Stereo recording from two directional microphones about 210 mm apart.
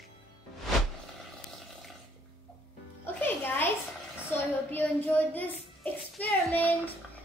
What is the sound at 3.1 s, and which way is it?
Music, 10° left (ahead or behind).